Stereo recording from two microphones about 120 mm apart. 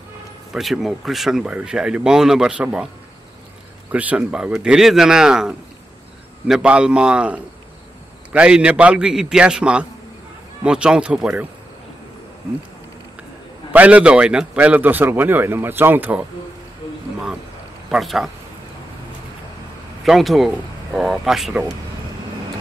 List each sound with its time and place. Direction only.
0.5 s speech: centre (ahead or behind)
3.9 s a man's voice: 10° right (ahead or behind)
13.7 s a man's voice: 10° right (ahead or behind)
17.9 s speech: centre (ahead or behind)
20.1 s speech: centre (ahead or behind)